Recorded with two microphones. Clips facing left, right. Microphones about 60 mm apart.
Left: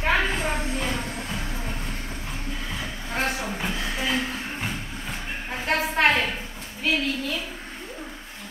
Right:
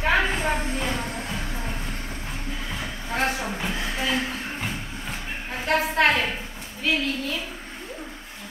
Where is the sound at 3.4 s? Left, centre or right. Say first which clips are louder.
Even; centre.